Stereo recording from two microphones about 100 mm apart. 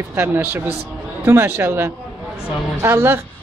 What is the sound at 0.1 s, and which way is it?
A woman's voice, 20° right (ahead or behind).